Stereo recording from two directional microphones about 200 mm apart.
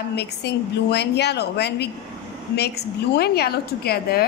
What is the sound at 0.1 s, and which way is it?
A woman's voice, 55° left (ahead or behind).